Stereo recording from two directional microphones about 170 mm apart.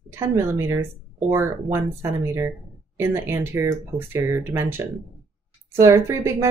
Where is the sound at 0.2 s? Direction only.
15° right (ahead or behind).